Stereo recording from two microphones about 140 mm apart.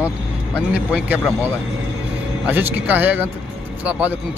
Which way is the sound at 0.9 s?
5° right (ahead or behind).